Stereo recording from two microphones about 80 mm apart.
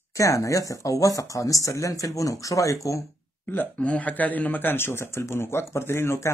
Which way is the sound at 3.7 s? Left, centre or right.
Centre.